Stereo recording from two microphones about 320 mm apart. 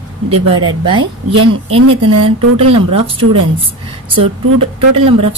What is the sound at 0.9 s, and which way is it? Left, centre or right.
Speech, right.